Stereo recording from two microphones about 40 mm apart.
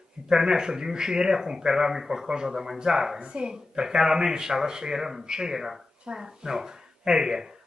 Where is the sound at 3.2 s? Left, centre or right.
Right.